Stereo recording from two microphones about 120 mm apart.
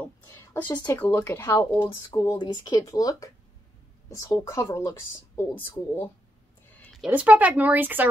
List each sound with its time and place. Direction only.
0.3 s a sound: 25° left (ahead or behind)
0.9 s speech: 20° left (ahead or behind)
2.0 s speech: 35° left (ahead or behind); by 6.0 s 15° left (ahead or behind)
7.1 s speech: 10° right (ahead or behind)